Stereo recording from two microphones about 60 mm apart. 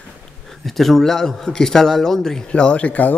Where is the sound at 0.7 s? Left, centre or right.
Centre.